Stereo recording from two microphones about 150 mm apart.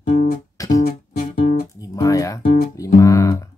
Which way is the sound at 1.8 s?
20° left (ahead or behind).